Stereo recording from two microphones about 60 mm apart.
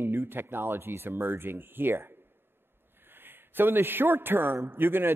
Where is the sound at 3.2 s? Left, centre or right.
Right.